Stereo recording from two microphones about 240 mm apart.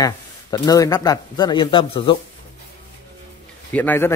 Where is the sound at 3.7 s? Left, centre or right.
Centre.